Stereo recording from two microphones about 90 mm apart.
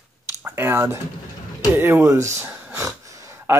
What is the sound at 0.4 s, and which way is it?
Speech, 25° right (ahead or behind).